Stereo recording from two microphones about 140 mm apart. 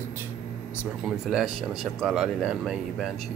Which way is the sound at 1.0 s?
5° right (ahead or behind).